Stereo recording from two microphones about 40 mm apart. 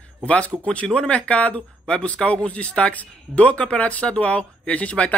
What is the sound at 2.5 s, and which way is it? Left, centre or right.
Speech, left.